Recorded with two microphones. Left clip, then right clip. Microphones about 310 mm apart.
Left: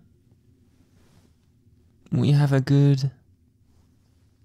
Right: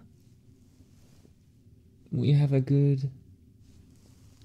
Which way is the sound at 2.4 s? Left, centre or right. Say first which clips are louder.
Left 5 dB; left.